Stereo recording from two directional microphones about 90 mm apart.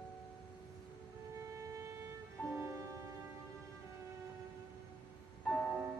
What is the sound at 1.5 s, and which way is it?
Music, 30° right (ahead or behind).